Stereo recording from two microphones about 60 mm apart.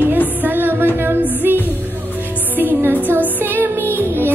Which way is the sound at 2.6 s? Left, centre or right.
Right.